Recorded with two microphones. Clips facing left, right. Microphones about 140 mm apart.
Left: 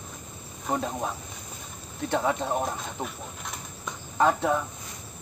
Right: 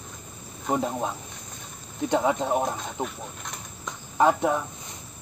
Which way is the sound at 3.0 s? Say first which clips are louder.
Right 5 dB; 20° right (ahead or behind).